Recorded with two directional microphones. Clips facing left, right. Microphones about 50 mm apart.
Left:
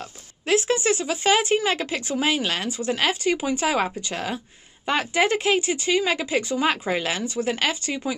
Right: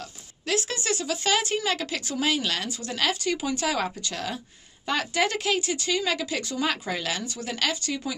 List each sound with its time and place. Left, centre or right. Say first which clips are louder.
0.0 s speech: left 3 dB; left